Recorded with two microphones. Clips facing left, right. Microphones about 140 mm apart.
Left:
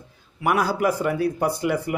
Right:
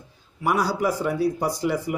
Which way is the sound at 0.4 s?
60° left (ahead or behind).